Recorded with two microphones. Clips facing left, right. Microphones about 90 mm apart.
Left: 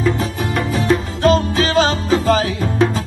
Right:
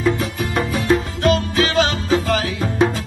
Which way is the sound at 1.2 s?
35° left (ahead or behind).